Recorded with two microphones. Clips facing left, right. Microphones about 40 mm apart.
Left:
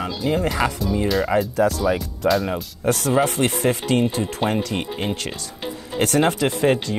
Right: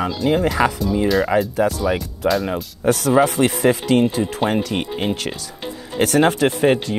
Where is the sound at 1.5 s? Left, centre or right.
Centre.